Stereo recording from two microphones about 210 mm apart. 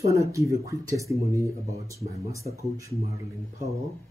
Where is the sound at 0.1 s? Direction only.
15° right (ahead or behind).